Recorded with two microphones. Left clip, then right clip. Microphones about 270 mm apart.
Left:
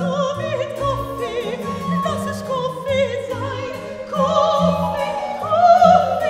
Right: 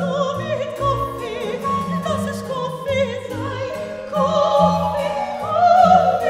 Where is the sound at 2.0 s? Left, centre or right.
Left.